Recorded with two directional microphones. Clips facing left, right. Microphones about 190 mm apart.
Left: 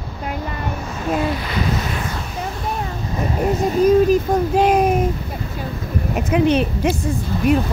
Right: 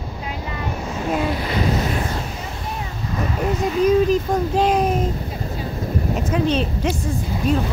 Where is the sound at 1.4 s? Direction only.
30° right (ahead or behind).